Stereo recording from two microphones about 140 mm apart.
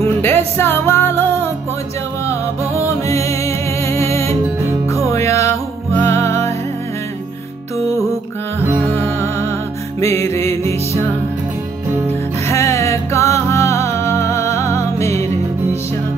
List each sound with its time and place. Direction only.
0.0 s music: 15° left (ahead or behind)
3.0 s music: 20° left (ahead or behind)
5.1 s music: 20° left (ahead or behind)
8.9 s music: 20° left (ahead or behind)
12.4 s music: 20° left (ahead or behind)